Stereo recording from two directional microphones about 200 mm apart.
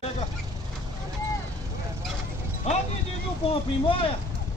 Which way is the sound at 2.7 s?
35° left (ahead or behind).